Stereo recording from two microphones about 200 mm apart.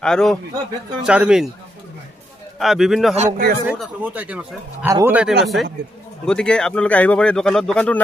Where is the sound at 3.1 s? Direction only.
40° right (ahead or behind).